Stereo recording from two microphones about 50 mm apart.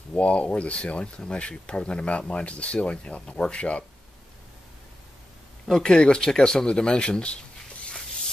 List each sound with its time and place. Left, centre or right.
0.1 s speech: left
5.7 s speech: centre